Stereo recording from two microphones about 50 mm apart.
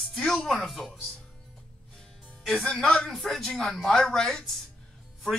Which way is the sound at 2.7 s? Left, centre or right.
Centre.